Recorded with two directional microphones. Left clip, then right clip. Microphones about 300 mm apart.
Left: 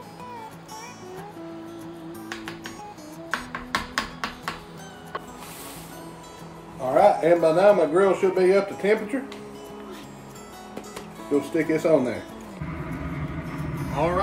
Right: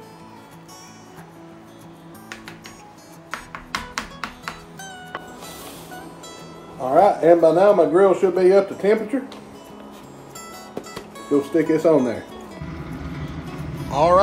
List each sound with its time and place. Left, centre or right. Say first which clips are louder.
3.3 s music: left 1 dB; centre
6.9 s speech: right 4 dB; centre
11.2 s speech: right 5 dB; centre
13.5 s music: right 7 dB; centre